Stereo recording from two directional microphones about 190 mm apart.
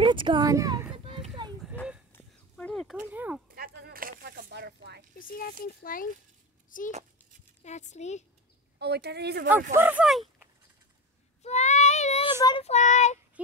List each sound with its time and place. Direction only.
0.0 s speech: 25° right (ahead or behind)
0.9 s a sound: 30° right (ahead or behind)
2.1 s a sound: 5° left (ahead or behind)
3.5 s a sound: 50° right (ahead or behind)
5.3 s speech: 50° left (ahead or behind)
7.6 s child singing: 35° left (ahead or behind)
8.7 s speech: 60° right (ahead or behind)
9.8 s speech: 10° right (ahead or behind)
11.4 s child singing: 35° left (ahead or behind)